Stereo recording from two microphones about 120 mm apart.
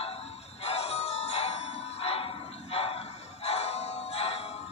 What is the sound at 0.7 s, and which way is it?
Music, 60° left (ahead or behind).